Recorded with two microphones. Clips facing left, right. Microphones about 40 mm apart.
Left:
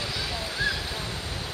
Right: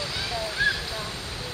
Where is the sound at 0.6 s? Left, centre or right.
Right.